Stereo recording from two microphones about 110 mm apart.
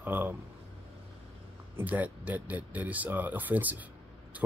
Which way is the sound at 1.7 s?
15° right (ahead or behind).